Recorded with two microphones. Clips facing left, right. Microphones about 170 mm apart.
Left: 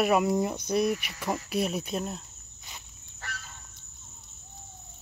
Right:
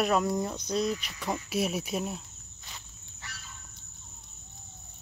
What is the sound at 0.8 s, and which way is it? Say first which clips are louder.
Speech: left 3 dB; 60° left (ahead or behind).